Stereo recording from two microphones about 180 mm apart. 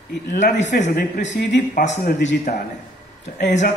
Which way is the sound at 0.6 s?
40° left (ahead or behind).